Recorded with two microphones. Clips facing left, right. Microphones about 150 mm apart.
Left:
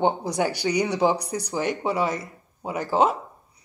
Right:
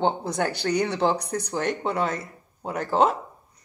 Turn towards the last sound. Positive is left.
turn(degrees=5)  # may be behind; listen again after turning